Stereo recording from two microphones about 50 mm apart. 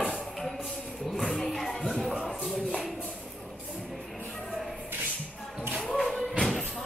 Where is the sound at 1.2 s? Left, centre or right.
Centre.